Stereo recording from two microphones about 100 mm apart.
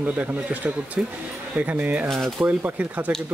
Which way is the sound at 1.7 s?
15° right (ahead or behind).